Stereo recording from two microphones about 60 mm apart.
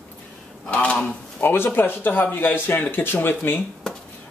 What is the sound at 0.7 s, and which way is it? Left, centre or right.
Speech, left.